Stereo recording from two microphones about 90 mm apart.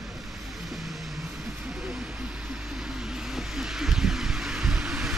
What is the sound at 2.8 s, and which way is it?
Vehicle, 5° right (ahead or behind).